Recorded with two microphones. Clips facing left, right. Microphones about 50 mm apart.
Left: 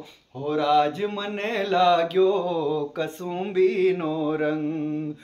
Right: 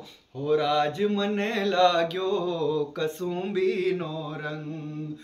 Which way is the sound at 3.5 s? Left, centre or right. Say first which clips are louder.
Left 6 dB; centre.